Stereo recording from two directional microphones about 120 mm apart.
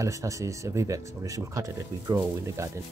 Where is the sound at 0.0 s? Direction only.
25° right (ahead or behind).